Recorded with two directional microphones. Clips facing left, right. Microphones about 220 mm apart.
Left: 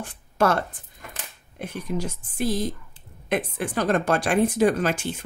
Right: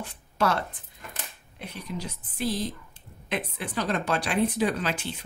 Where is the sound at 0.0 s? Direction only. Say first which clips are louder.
Left 4 dB; 50° left (ahead or behind).